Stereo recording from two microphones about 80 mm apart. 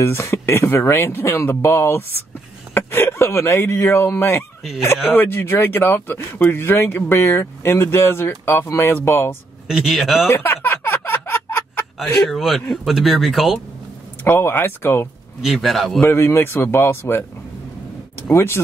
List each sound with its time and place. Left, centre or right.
0.0 s speech: left
9.7 s speech: centre
10.2 s music: left
12.0 s speech: centre
14.2 s speech: left
15.4 s speech: centre
16.0 s speech: left
18.3 s speech: left